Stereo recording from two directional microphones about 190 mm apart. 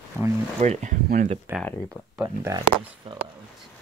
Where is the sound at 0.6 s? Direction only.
35° right (ahead or behind).